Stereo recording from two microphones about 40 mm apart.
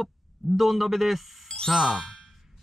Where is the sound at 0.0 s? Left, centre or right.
Centre.